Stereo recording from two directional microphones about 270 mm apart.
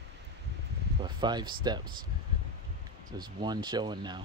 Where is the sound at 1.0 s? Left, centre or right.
Centre.